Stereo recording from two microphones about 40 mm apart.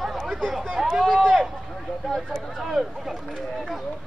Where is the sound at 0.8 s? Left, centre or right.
Centre.